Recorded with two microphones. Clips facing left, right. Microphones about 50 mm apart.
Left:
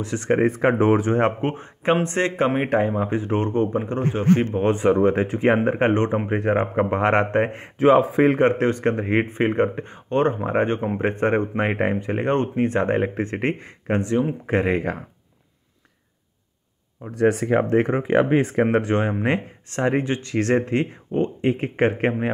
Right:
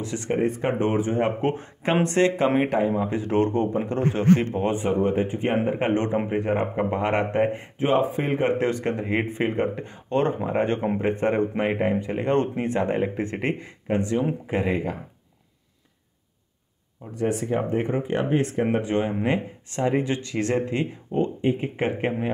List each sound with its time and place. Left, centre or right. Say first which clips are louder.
0.0 s speech: left 3 dB; left
0.3 s speech: left 5 dB; left
1.4 s speech: even; left
4.1 s speech: left 1 dB; centre
4.7 s speech: left 5 dB; left
5.7 s speech: left 3 dB; left
7.6 s speech: left 6 dB; left
8.5 s speech: left 3 dB; left
17.1 s speech: left 6 dB; left
18.7 s speech: left 3 dB; left
21.4 s speech: left 4 dB; left